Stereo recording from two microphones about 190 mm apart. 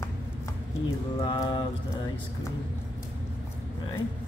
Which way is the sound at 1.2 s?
20° left (ahead or behind).